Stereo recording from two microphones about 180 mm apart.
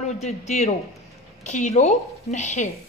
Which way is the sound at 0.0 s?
40° left (ahead or behind).